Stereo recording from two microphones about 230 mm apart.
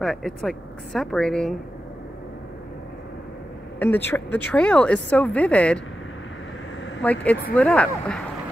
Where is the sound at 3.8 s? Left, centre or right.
Centre.